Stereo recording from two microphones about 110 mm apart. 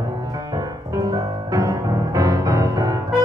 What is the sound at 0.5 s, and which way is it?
Music, 35° right (ahead or behind).